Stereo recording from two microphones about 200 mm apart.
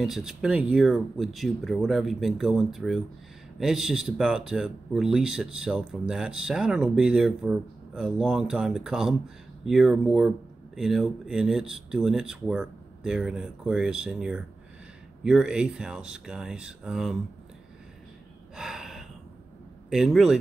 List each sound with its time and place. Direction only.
0.0 s speech: centre (ahead or behind)
18.6 s gasp: centre (ahead or behind)
19.9 s speech: centre (ahead or behind)